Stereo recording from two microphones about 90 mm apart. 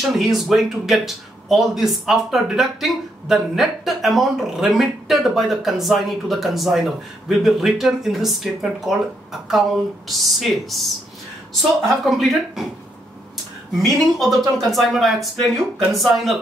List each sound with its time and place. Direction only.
0.0 s a man's voice: 5° right (ahead or behind)
12.1 s a man's voice: centre (ahead or behind)
13.8 s a man's voice: centre (ahead or behind)